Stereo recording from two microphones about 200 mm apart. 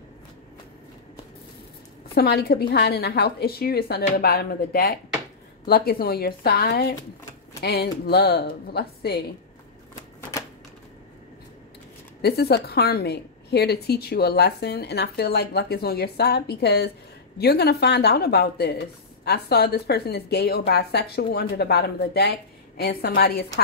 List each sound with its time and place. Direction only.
2.1 s speech: 50° left (ahead or behind)
12.2 s speech: 50° left (ahead or behind)